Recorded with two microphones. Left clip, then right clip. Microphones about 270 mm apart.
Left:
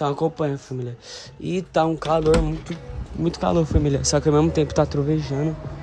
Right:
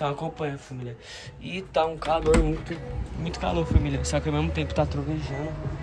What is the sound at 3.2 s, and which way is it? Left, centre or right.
Speech, centre.